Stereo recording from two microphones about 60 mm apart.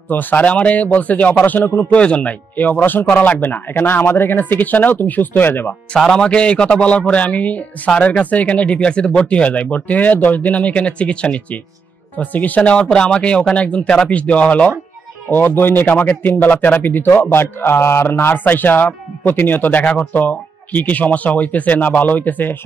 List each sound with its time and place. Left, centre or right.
0.1 s speech: left
5.9 s speech: centre
15.3 s a man's voice: left